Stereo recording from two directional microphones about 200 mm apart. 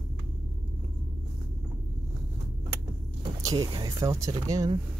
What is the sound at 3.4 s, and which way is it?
Speech, 20° right (ahead or behind).